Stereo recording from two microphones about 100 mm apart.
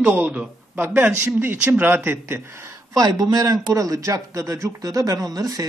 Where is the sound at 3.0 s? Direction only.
40° right (ahead or behind).